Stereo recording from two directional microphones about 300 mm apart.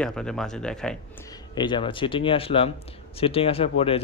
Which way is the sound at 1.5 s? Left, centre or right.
Centre.